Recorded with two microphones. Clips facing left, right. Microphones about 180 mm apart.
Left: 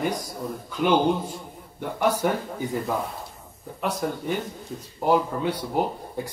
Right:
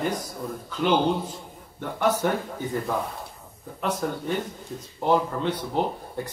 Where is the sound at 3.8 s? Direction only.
10° left (ahead or behind).